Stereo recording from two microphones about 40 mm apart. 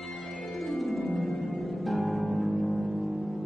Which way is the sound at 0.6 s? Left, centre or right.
Centre.